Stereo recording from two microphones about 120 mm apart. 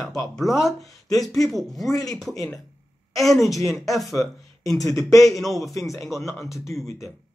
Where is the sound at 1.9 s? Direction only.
30° left (ahead or behind).